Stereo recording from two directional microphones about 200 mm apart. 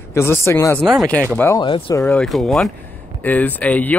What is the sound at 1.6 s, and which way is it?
Speech, 25° left (ahead or behind).